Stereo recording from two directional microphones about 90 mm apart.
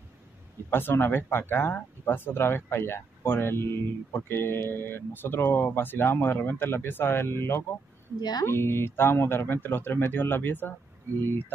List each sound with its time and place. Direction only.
0.7 s speech: 25° left (ahead or behind)
8.2 s speech: 50° left (ahead or behind)
8.5 s speech: 30° left (ahead or behind)